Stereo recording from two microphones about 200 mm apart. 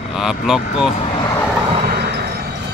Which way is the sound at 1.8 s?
55° right (ahead or behind).